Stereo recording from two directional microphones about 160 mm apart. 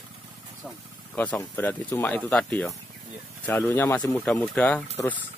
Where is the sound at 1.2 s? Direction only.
10° left (ahead or behind).